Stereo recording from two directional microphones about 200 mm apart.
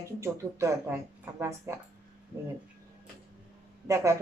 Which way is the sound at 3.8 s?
15° right (ahead or behind).